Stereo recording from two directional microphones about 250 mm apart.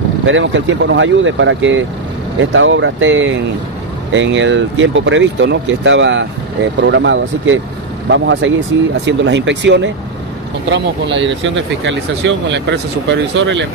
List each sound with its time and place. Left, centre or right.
0.2 s speech: right